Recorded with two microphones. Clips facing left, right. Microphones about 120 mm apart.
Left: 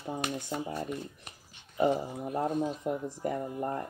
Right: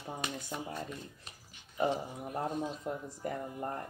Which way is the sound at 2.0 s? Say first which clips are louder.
Left 5 dB; 30° left (ahead or behind).